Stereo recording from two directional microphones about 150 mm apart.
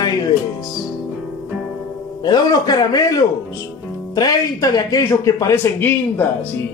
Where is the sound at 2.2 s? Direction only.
25° left (ahead or behind).